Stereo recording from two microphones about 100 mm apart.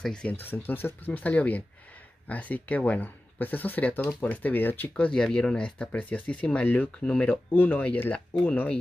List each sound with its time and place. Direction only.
0.0 s speech: 10° left (ahead or behind)